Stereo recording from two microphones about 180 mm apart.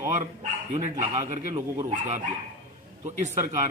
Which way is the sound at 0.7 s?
40° right (ahead or behind).